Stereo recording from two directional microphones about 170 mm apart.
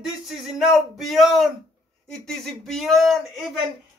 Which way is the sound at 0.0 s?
Centre (ahead or behind).